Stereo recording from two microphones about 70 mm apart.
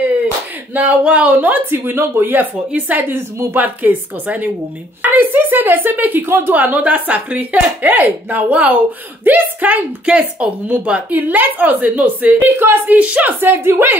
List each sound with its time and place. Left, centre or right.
0.7 s speech: right
13.4 s speech: right